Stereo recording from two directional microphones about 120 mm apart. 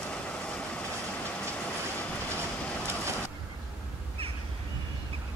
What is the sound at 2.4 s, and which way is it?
Vehicle, 20° right (ahead or behind).